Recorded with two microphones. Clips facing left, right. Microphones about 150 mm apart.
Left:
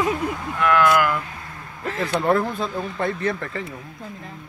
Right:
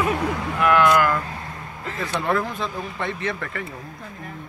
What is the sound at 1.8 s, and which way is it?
Speech, 60° left (ahead or behind).